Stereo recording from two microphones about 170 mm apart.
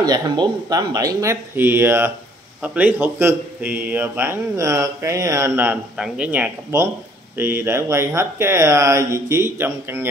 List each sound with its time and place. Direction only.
0.0 s a man's voice: 20° right (ahead or behind)